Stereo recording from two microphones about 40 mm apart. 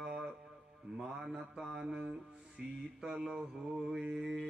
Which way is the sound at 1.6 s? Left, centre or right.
Centre.